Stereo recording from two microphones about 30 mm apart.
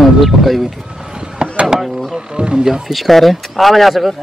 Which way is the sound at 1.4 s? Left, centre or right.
Right.